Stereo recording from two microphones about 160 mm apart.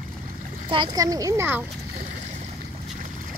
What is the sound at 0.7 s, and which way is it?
Speech, 25° right (ahead or behind).